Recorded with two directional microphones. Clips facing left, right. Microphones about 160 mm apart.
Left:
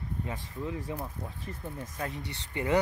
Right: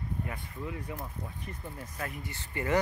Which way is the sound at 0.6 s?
25° left (ahead or behind).